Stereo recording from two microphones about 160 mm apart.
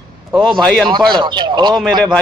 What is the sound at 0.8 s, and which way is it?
Speech, 30° right (ahead or behind).